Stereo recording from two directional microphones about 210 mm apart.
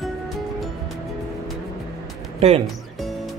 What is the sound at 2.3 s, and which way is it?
Speech, 30° right (ahead or behind).